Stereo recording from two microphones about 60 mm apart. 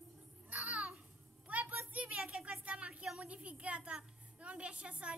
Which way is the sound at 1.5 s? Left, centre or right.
Right.